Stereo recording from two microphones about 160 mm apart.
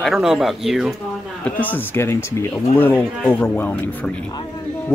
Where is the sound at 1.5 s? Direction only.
10° left (ahead or behind).